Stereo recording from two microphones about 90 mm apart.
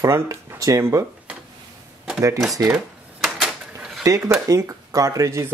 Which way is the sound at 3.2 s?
5° right (ahead or behind).